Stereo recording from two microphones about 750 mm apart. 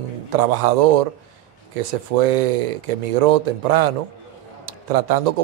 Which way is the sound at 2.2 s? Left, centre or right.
Right.